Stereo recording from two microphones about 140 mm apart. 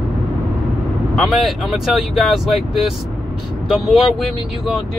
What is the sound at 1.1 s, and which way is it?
Speech, centre (ahead or behind).